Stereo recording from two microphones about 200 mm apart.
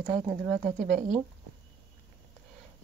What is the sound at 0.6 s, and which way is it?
Speech, 35° right (ahead or behind).